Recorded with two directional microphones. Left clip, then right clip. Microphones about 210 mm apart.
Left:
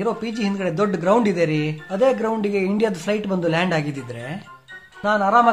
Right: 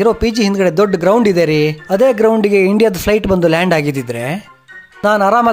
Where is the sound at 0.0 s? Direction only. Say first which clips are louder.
Right 11 dB; 45° right (ahead or behind).